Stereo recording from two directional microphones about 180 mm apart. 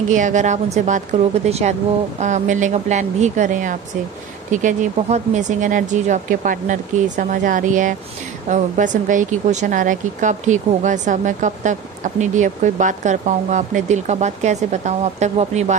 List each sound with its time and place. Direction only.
0.1 s speech: 45° right (ahead or behind)